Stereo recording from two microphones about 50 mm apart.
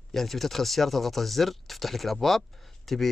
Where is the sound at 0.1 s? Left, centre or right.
Centre.